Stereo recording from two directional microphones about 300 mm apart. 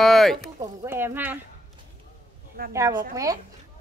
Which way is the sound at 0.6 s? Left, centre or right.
Centre.